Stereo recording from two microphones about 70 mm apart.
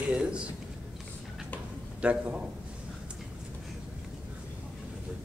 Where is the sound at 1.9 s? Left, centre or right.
Centre.